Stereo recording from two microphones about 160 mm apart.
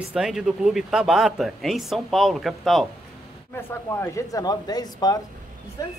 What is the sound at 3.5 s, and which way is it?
Speech, 15° left (ahead or behind).